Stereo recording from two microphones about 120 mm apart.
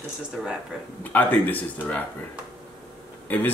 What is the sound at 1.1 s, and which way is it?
Speech, 15° left (ahead or behind).